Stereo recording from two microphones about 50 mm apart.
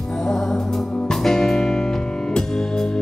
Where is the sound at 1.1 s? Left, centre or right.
Centre.